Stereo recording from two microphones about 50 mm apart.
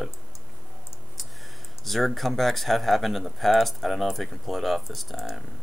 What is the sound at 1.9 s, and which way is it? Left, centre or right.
Speech, centre.